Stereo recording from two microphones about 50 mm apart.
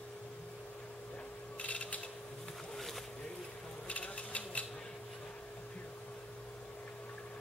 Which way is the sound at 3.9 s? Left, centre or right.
Left.